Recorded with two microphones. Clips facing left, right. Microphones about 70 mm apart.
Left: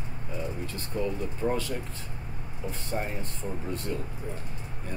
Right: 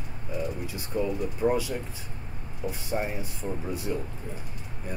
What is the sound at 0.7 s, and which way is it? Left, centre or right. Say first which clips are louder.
Speech: right 2 dB; centre.